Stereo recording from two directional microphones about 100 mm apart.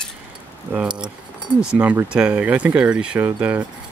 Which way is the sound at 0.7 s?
10° right (ahead or behind).